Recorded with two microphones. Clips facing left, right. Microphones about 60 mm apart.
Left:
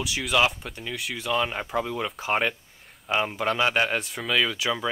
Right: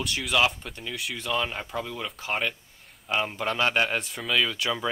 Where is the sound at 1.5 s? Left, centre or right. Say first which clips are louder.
Left 5 dB; centre.